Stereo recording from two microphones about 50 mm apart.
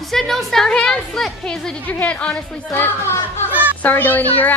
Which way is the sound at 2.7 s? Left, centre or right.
Left.